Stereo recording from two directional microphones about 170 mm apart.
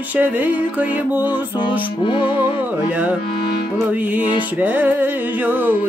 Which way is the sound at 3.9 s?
10° right (ahead or behind).